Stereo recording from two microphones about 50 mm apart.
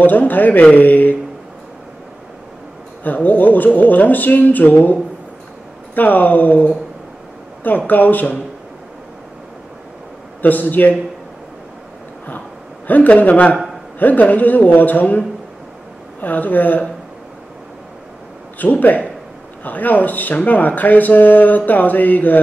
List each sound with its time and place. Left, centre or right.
0.0 s speech: left
3.0 s speech: left
5.9 s speech: left
10.4 s speech: left
12.8 s speech: left
18.6 s speech: left